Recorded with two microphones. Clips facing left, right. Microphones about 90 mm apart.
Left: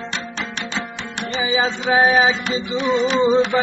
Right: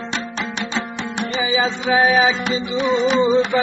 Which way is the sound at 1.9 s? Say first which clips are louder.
Even; 30° left (ahead or behind).